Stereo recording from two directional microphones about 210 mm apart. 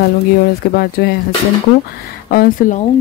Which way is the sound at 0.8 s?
45° left (ahead or behind).